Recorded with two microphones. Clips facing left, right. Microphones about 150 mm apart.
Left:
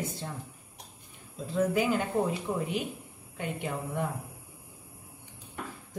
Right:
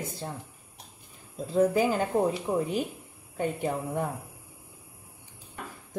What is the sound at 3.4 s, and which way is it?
Speech, 40° right (ahead or behind).